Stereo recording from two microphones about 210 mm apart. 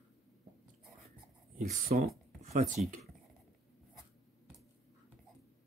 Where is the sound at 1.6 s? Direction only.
35° right (ahead or behind).